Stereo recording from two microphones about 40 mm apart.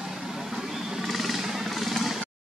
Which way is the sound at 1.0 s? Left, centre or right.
Centre.